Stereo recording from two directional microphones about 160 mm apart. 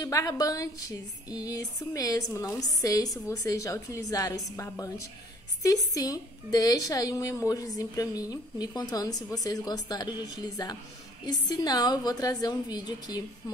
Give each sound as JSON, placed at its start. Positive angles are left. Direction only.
{"t": 0.0, "sound": "a woman's voice", "side_deg": 20}